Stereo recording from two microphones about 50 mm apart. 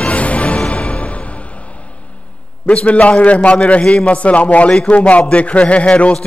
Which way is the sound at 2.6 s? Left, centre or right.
Left.